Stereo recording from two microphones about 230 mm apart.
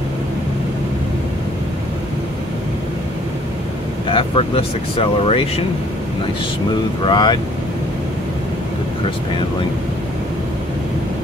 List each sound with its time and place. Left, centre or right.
4.1 s speech: left
7.1 s speech: centre